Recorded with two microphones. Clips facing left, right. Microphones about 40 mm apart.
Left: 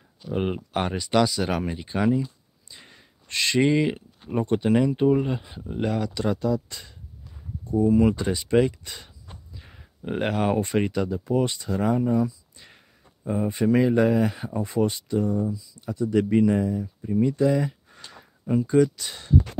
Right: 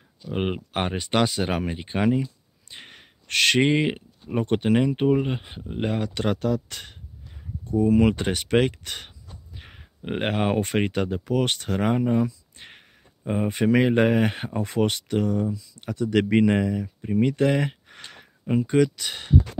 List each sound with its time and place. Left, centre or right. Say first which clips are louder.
0.3 s speech: left 1 dB; right
2.7 s a sound: right 5 dB; right
3.6 s speech: even; right
9.6 s speech: right 1 dB; right
11.3 s speech: even; right
12.0 s a sound: even; right
13.3 s speech: right 1 dB; right
16.8 s speech: right 1 dB; right
18.0 s a sound: right 1 dB; right
18.7 s speech: left 1 dB; right